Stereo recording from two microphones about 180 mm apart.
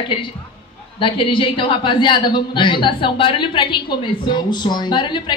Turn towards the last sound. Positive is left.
turn(degrees=25)  # may be behind; listen again after turning